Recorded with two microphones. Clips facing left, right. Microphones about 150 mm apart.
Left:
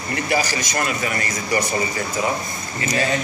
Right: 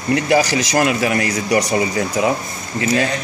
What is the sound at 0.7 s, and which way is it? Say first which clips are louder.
Speech: right 7 dB; 85° right.